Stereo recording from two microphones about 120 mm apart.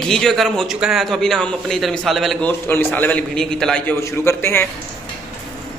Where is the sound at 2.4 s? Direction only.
15° left (ahead or behind).